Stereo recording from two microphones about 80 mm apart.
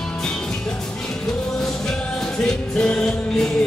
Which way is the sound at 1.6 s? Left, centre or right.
Centre.